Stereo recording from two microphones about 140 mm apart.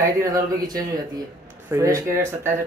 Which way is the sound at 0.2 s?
25° right (ahead or behind).